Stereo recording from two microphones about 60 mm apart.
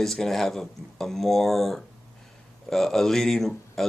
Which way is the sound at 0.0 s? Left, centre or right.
Centre.